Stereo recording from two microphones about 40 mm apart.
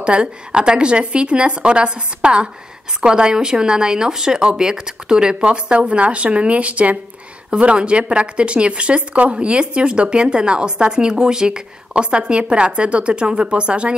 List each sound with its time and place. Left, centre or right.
0.0 s speech: right